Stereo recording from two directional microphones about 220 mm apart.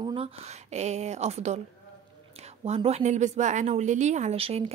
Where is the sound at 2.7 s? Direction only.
30° right (ahead or behind).